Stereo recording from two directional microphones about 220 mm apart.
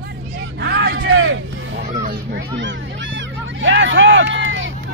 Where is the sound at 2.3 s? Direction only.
55° right (ahead or behind).